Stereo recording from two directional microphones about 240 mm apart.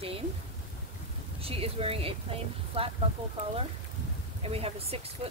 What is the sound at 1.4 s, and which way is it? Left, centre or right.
Speech, right.